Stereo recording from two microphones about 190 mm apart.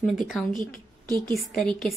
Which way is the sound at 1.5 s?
Centre (ahead or behind).